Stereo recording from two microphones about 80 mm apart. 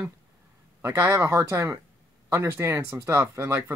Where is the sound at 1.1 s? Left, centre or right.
Right.